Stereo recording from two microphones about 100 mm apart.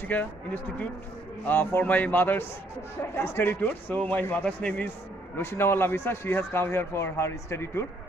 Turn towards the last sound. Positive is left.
turn(degrees=25)  # may be behind; listen again after turning